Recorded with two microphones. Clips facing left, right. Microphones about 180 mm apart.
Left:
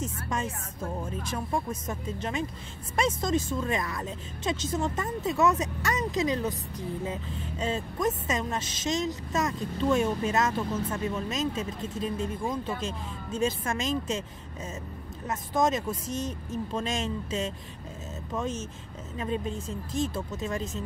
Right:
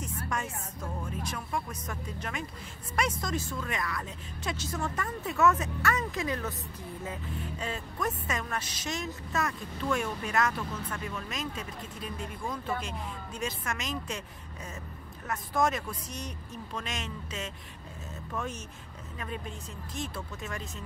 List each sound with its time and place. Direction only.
0.3 s a woman's voice: 25° left (ahead or behind)
15.2 s a woman's voice: 20° left (ahead or behind)